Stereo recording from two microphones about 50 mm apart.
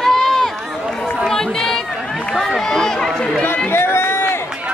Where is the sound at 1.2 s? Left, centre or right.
Centre.